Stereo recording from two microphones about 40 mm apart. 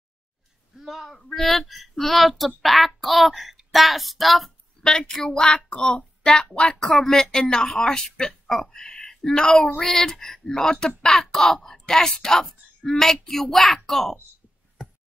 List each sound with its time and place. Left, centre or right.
0.7 s a sound: centre
1.1 s a child's voice: centre
4.8 s a woman's voice: centre
11.7 s a child's voice: centre